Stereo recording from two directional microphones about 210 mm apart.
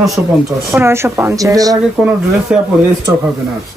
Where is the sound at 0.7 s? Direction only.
10° right (ahead or behind).